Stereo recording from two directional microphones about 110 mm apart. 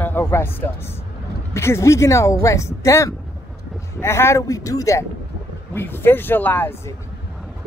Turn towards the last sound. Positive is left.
turn(degrees=15)  # may be behind; listen again after turning